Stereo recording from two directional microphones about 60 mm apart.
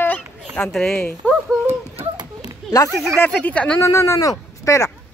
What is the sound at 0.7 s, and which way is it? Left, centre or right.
Speech, centre.